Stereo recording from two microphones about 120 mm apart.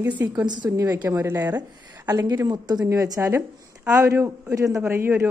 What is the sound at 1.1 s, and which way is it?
Speech, 20° right (ahead or behind).